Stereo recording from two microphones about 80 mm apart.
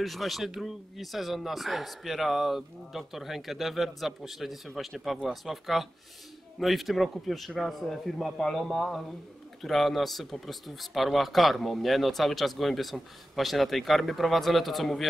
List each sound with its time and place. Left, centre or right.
0.0 s speech: centre